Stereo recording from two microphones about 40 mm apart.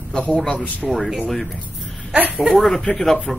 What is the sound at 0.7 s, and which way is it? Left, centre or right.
Speech, centre.